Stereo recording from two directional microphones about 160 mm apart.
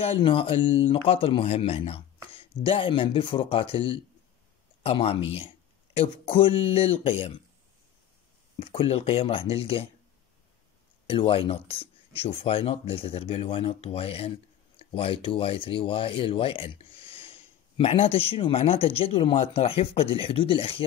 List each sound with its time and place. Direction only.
0.0 s speech: 35° left (ahead or behind)
8.5 s speech: 40° left (ahead or behind)
11.1 s speech: 35° left (ahead or behind)